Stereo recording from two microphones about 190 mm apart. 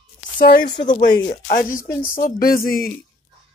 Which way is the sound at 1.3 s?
35° left (ahead or behind).